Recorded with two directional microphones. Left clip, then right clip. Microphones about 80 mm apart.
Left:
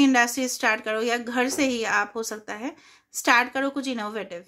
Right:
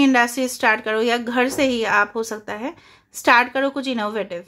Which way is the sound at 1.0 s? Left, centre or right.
Right.